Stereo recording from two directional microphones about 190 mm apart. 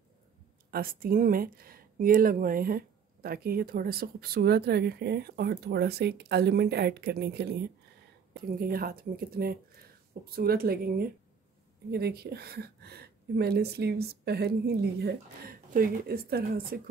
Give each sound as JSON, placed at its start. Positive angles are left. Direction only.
{"t": 0.7, "sound": "speech", "side_deg": -50}